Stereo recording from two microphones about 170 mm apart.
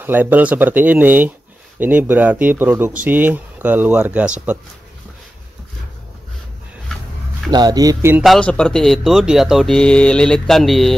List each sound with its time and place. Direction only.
0.0 s speech: 10° right (ahead or behind)
7.5 s speech: 25° right (ahead or behind)
8.2 s speech: 5° left (ahead or behind)